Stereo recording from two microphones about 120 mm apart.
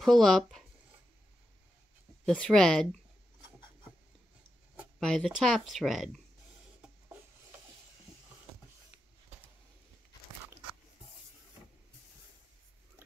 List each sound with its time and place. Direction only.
0.0 s speech: centre (ahead or behind)
2.2 s speech: 5° left (ahead or behind)
5.0 s speech: centre (ahead or behind)